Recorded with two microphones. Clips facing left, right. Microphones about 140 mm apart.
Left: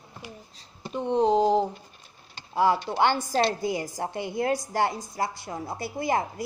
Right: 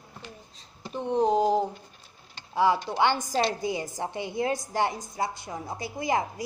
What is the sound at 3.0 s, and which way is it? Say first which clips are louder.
A woman's voice: left 2 dB; 15° right (ahead or behind).